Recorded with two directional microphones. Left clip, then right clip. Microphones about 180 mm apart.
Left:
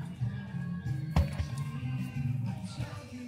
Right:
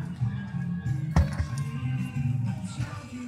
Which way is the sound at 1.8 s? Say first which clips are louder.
Right 5 dB; 20° right (ahead or behind).